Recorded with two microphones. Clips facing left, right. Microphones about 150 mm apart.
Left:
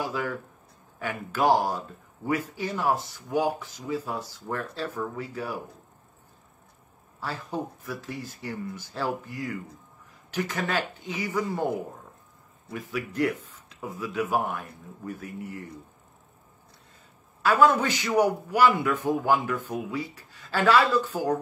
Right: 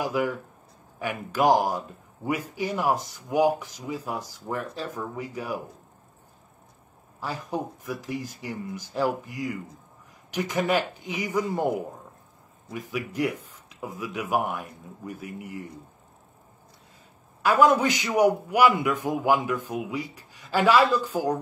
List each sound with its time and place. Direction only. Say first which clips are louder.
0.1 s a man's voice: right 4 dB; 15° right (ahead or behind)
7.2 s a man's voice: right 2 dB; 15° right (ahead or behind)
12.7 s a man's voice: even; 15° right (ahead or behind)
17.4 s a man's voice: right 1 dB; 15° right (ahead or behind)